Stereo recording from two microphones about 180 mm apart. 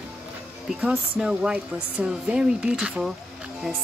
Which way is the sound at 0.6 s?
5° right (ahead or behind).